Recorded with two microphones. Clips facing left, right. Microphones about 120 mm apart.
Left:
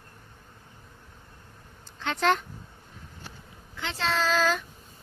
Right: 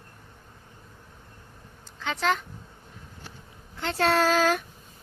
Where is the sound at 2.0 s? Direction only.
Centre (ahead or behind).